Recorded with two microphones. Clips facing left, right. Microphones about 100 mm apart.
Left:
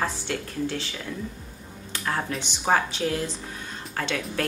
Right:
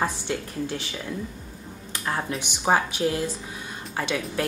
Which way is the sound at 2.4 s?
10° right (ahead or behind).